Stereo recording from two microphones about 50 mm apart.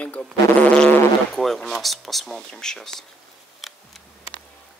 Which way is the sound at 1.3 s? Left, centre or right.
Centre.